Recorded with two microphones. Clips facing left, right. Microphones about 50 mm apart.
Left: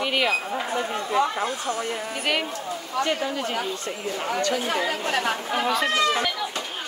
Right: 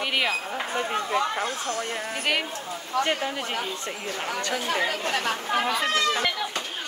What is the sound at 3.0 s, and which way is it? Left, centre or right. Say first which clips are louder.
Speech: left 1 dB; right.